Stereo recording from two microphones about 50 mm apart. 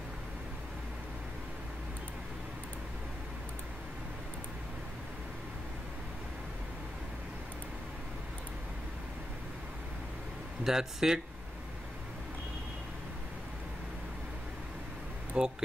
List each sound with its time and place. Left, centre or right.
10.6 s speech: centre
15.3 s speech: right